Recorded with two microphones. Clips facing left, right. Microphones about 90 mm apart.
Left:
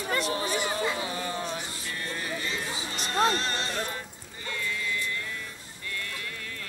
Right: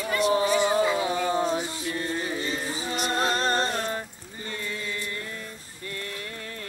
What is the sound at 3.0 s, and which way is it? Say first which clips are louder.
Music: even; 40° right (ahead or behind).